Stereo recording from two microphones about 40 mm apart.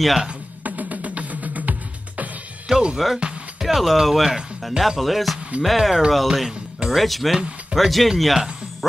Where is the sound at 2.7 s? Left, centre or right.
Right.